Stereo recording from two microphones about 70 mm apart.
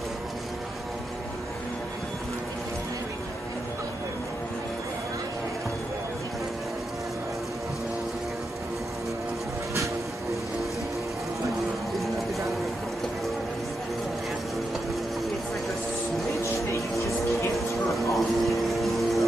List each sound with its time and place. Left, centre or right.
16.4 s music: left
18.1 s vehicle: centre